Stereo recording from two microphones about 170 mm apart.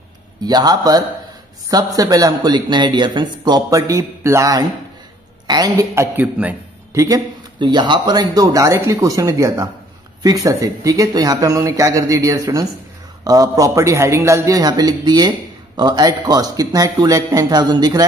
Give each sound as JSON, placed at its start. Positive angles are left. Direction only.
{"t": 0.4, "sound": "a man's voice", "side_deg": -25}